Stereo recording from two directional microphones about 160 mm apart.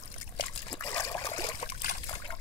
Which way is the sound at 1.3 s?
25° left (ahead or behind).